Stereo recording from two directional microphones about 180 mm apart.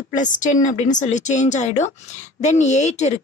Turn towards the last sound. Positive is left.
turn(degrees=40)  # may be behind; listen again after turning